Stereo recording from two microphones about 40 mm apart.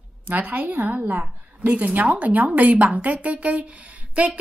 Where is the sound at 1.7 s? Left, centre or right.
Right.